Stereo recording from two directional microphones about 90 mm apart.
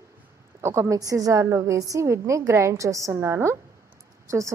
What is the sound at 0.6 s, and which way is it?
A woman's voice, 30° right (ahead or behind).